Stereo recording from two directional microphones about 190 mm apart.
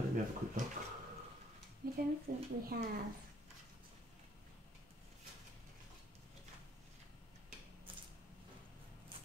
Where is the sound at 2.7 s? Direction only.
60° right (ahead or behind).